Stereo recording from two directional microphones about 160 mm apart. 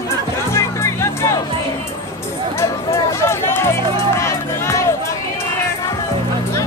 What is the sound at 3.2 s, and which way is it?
Music, 15° left (ahead or behind).